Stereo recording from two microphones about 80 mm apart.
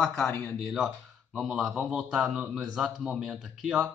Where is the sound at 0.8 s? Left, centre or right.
Centre.